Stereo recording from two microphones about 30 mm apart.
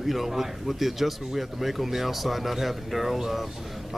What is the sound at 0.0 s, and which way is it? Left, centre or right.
A man's voice, centre.